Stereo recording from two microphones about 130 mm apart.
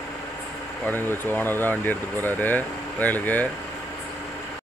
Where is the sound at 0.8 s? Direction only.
15° left (ahead or behind).